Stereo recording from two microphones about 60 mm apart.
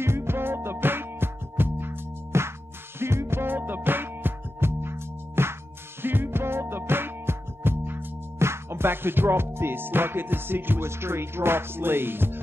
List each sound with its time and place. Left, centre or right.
0.0 s music: right